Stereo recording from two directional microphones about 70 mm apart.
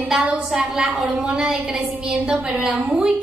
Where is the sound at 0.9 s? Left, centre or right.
Centre.